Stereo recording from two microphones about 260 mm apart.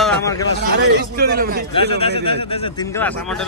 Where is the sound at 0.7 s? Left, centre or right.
Right.